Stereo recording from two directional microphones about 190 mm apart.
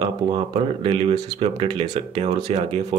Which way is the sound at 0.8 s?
30° right (ahead or behind).